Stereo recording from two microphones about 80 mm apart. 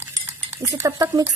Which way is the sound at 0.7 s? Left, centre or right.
Right.